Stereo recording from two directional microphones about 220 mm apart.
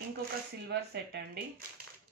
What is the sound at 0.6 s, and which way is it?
Speech, 50° right (ahead or behind).